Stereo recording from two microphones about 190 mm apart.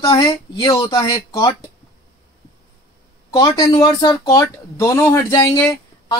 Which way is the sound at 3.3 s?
20° left (ahead or behind).